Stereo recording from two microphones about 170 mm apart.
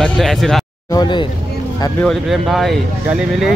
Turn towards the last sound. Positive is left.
turn(degrees=0)  # may be behind; listen again after turning